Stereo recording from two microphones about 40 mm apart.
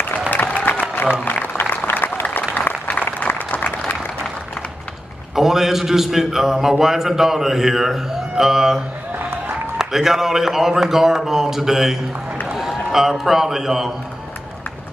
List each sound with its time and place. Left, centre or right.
0.3 s applause: left
1.1 s applause: left
2.5 s a sound: left
5.3 s a man's voice: centre